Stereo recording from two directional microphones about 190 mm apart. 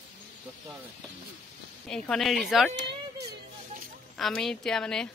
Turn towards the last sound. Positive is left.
turn(degrees=5)  # may be behind; listen again after turning